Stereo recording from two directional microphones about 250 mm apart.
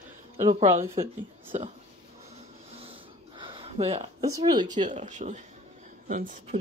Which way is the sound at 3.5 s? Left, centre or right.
Right.